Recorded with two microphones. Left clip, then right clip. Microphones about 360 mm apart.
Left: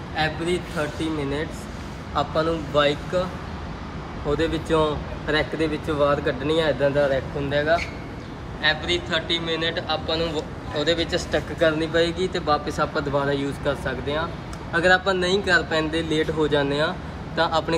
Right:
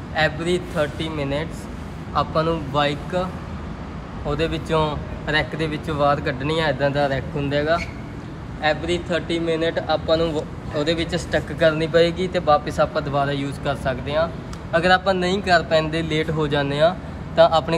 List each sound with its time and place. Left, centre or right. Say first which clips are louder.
0.1 s speech: right 3 dB; centre
2.1 s speech: right 2 dB; centre
4.4 s speech: right 1 dB; centre
8.6 s speech: right 1 dB; centre